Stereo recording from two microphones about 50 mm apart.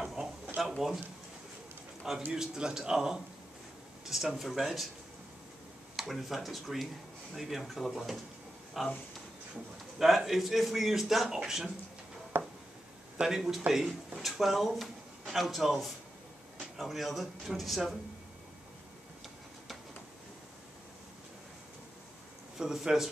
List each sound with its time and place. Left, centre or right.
0.0 s a sound: centre
0.7 s speech: centre
2.3 s a man's voice: centre
5.9 s a man's voice: centre
9.9 s a man's voice: centre
12.3 s a sound: right
13.2 s a man's voice: centre
22.6 s a man's voice: centre